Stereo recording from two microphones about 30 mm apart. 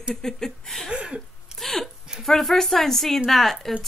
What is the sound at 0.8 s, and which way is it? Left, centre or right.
Speech, right.